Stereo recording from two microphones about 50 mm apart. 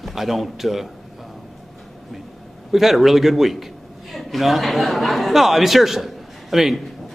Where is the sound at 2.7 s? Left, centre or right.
Centre.